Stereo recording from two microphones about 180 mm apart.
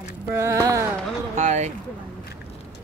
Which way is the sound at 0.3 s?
15° right (ahead or behind).